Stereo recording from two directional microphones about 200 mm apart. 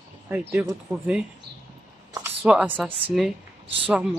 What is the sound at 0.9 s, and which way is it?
Speech, 15° right (ahead or behind).